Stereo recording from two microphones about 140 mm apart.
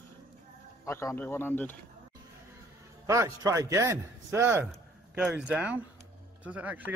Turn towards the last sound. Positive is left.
turn(degrees=-10)  # may be behind; listen again after turning